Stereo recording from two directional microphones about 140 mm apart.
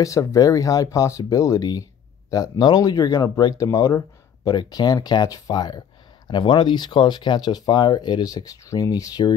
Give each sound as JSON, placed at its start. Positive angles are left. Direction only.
{"t": 0.0, "sound": "speech", "side_deg": 25}